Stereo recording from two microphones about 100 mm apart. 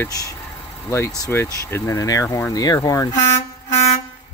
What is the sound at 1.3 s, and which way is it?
Speech, 25° left (ahead or behind).